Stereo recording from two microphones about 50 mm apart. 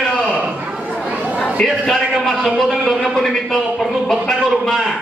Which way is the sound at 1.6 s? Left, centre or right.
Centre.